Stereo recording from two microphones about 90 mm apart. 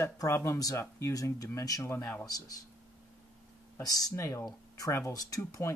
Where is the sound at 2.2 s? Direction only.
40° left (ahead or behind).